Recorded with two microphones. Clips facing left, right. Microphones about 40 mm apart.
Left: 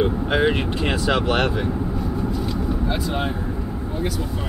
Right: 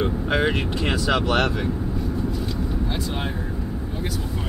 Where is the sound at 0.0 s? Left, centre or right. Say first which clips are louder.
Left 3 dB; centre.